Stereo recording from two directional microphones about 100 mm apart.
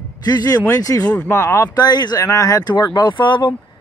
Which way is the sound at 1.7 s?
45° left (ahead or behind).